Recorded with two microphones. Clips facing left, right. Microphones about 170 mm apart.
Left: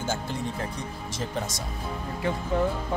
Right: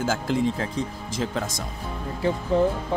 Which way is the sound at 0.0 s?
90° right.